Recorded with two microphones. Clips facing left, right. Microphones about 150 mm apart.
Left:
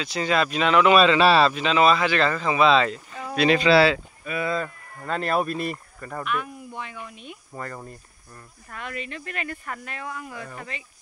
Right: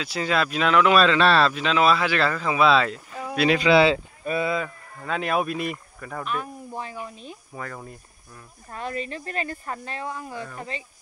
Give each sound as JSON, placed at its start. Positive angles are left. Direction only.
{"t": 0.0, "sound": "speech", "side_deg": -5}
{"t": 3.7, "sound": "speech", "side_deg": -20}
{"t": 4.6, "sound": "speech", "side_deg": 0}
{"t": 6.2, "sound": "speech", "side_deg": -35}
{"t": 7.5, "sound": "speech", "side_deg": 0}
{"t": 8.6, "sound": "speech", "side_deg": -35}